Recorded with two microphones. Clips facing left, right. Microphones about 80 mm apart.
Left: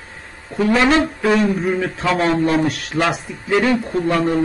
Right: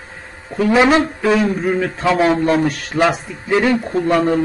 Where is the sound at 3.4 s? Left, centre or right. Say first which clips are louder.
Right 1 dB; centre.